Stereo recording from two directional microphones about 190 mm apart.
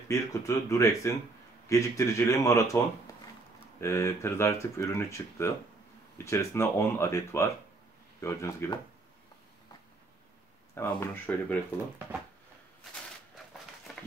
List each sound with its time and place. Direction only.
0.1 s speech: 15° left (ahead or behind)
3.8 s speech: 15° left (ahead or behind)
10.7 s speech: 15° left (ahead or behind)